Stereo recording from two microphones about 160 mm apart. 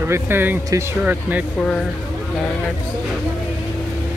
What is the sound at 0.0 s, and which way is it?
Speech, 15° right (ahead or behind).